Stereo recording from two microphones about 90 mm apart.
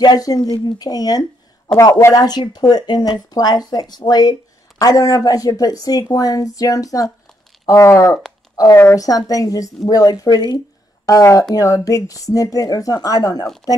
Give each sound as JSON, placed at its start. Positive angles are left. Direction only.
{"t": 0.0, "sound": "speech", "side_deg": 45}
{"t": 2.0, "sound": "speech", "side_deg": 35}
{"t": 2.2, "sound": "a woman's voice", "side_deg": 50}
{"t": 9.0, "sound": "speech", "side_deg": 40}
{"t": 11.1, "sound": "speech", "side_deg": 40}